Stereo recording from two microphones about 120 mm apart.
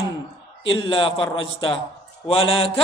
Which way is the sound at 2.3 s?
50° left (ahead or behind).